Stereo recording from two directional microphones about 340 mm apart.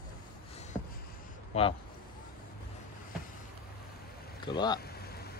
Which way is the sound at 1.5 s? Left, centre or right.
Centre.